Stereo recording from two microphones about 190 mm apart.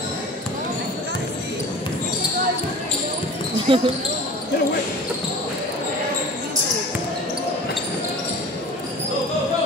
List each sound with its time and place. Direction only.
3.7 s speech: 25° right (ahead or behind)